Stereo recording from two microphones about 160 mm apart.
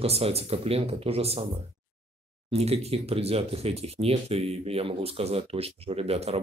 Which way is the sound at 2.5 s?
40° right (ahead or behind).